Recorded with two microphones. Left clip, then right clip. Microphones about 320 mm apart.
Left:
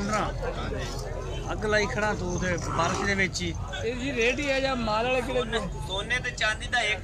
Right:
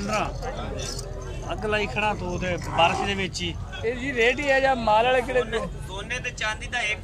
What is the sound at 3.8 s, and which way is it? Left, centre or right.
Speech, right.